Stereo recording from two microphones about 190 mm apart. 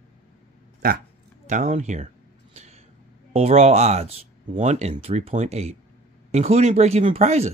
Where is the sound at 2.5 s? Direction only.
35° right (ahead or behind).